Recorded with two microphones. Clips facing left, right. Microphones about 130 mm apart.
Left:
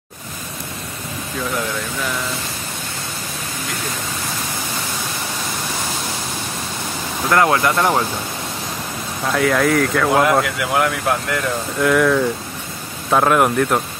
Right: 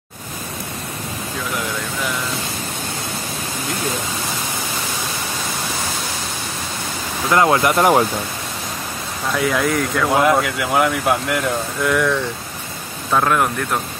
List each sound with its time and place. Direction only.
7.2 s speech: 20° right (ahead or behind)
9.3 s speech: centre (ahead or behind)